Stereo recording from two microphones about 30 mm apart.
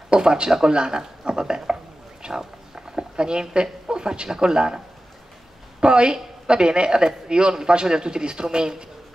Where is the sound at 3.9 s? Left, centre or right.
Right.